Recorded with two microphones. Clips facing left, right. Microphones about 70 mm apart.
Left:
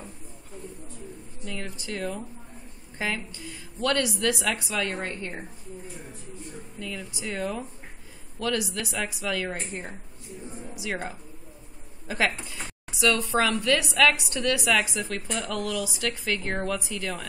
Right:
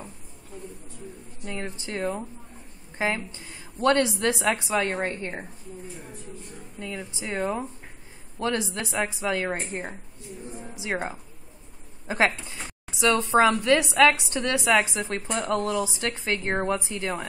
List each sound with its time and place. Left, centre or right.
1.4 s a woman's voice: right
6.8 s a woman's voice: right
10.7 s a woman's voice: right
12.1 s a woman's voice: right